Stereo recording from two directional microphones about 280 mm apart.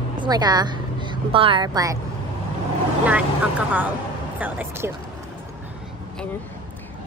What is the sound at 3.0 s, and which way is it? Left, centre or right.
Speech, centre.